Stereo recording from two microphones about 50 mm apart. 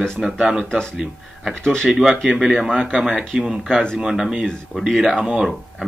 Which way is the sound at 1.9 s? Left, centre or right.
Centre.